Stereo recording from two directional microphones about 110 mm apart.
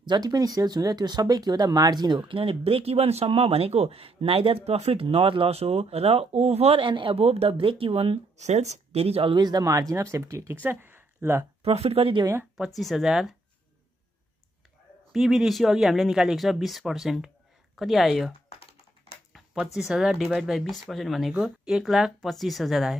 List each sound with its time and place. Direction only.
0.0 s speech: 40° right (ahead or behind); by 9.4 s 60° right (ahead or behind)
9.4 s speech: 40° right (ahead or behind); by 11.4 s 20° right (ahead or behind)
11.6 s speech: 65° right (ahead or behind)
12.5 s speech: centre (ahead or behind)
15.1 s speech: 5° right (ahead or behind)
19.5 s speech: 5° right (ahead or behind)